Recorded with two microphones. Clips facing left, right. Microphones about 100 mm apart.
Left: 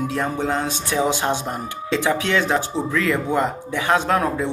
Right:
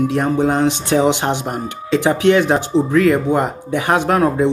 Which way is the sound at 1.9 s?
15° right (ahead or behind).